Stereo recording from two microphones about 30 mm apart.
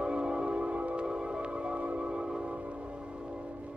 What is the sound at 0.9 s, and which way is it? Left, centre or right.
Music, right.